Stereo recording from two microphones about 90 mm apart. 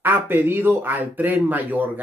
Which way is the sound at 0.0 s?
20° right (ahead or behind).